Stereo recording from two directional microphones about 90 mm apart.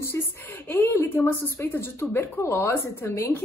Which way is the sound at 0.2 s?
30° left (ahead or behind).